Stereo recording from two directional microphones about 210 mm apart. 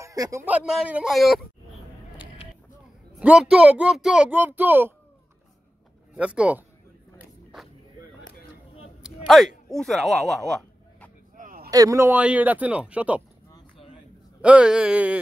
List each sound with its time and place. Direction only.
0.0 s a man's voice: 15° right (ahead or behind)
0.7 s speech: 5° right (ahead or behind)
3.2 s speech: 5° right (ahead or behind)
6.1 s speech: 5° right (ahead or behind)
9.7 s speech: centre (ahead or behind)
11.3 s a sound: 40° right (ahead or behind)
11.7 s speech: 15° right (ahead or behind)
13.5 s a sound: 20° left (ahead or behind)
14.4 s speech: 5° right (ahead or behind)